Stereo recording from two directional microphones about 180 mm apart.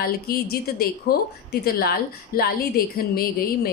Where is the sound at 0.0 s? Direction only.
60° left (ahead or behind).